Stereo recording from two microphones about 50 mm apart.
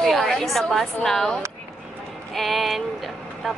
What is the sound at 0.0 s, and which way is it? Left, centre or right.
A woman's voice, centre.